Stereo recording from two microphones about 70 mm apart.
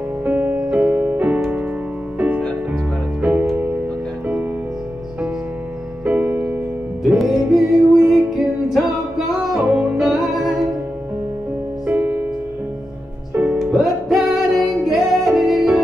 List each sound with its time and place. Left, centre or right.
0.2 s music: right
6.0 s music: right
7.0 s music: centre
11.9 s music: right
13.6 s music: centre